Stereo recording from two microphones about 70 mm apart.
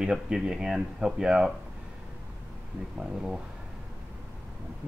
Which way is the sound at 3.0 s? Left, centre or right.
Centre.